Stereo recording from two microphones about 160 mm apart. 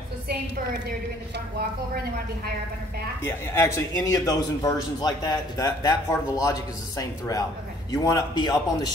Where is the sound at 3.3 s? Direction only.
15° left (ahead or behind).